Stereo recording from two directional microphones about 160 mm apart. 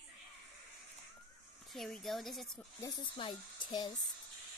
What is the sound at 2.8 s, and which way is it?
A child's voice, 30° left (ahead or behind).